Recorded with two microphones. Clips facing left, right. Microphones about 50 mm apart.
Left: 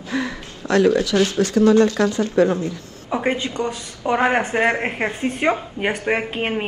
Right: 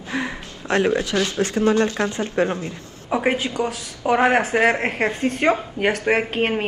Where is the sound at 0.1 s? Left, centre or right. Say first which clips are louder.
Left 2 dB; right.